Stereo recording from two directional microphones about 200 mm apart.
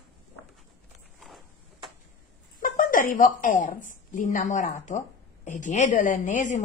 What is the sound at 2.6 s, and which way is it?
A woman's voice, 40° left (ahead or behind).